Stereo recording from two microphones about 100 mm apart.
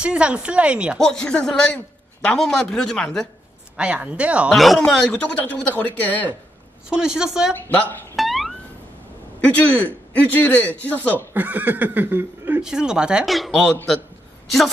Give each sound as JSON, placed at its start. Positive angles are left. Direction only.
{"t": 0.0, "sound": "speech", "side_deg": -10}
{"t": 0.9, "sound": "speech", "side_deg": 5}
{"t": 3.7, "sound": "speech", "side_deg": -10}
{"t": 4.5, "sound": "speech", "side_deg": 0}
{"t": 5.4, "sound": "speech", "side_deg": 15}
{"t": 6.9, "sound": "speech", "side_deg": -5}
{"t": 7.5, "sound": "speech", "side_deg": 20}
{"t": 8.2, "sound": "plucked string instrument", "side_deg": 0}
{"t": 9.4, "sound": "speech", "side_deg": 15}
{"t": 11.3, "sound": "speech", "side_deg": -15}
{"t": 12.6, "sound": "speech", "side_deg": -5}